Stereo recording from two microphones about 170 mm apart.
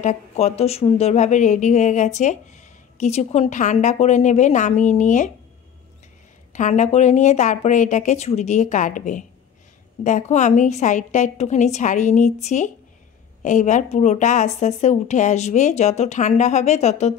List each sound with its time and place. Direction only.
0.0 s a woman's voice: 40° left (ahead or behind)
6.5 s a woman's voice: 45° left (ahead or behind)